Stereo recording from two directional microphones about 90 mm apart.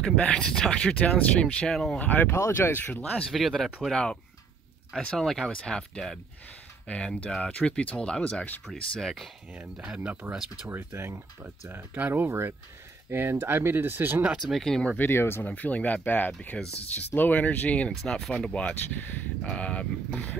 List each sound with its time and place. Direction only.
0.0 s speech: 10° left (ahead or behind)
2.0 s speech: 20° left (ahead or behind)
2.9 s speech: 10° left (ahead or behind)
3.3 s speech: centre (ahead or behind)
9.5 s speech: 15° right (ahead or behind)
10.7 s speech: 30° right (ahead or behind)
14.5 s speech: 5° left (ahead or behind)
15.0 s speech: 25° left (ahead or behind); by 20.3 s 5° left (ahead or behind)